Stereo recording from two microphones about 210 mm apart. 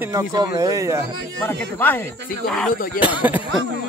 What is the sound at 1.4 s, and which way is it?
Speech, 10° left (ahead or behind).